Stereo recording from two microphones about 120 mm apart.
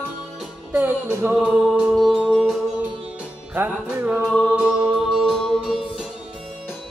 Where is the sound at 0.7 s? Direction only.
20° right (ahead or behind).